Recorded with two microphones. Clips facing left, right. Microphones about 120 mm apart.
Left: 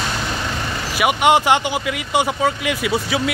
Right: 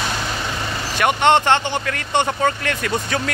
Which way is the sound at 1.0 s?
10° left (ahead or behind).